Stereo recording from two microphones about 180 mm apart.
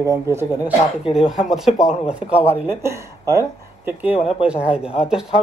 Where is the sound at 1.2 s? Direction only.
Centre (ahead or behind).